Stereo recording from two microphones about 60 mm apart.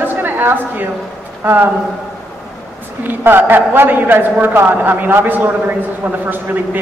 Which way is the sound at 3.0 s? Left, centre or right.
Right.